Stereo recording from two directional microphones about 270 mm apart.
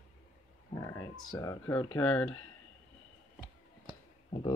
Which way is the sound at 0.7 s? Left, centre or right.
Centre.